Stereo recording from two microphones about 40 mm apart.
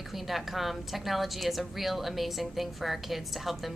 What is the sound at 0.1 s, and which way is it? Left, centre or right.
A woman's voice, centre.